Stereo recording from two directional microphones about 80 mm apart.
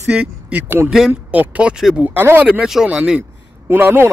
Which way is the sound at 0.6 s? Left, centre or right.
Right.